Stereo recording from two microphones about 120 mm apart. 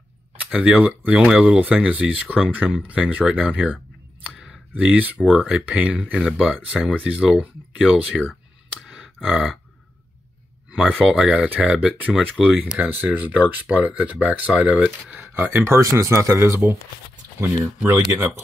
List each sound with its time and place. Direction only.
0.4 s speech: 10° right (ahead or behind)
4.2 s a sound: 10° right (ahead or behind)
5.4 s speech: 10° right (ahead or behind)
8.8 s a sound: 5° right (ahead or behind)
11.1 s speech: 10° right (ahead or behind)
17.8 s speech: 20° right (ahead or behind)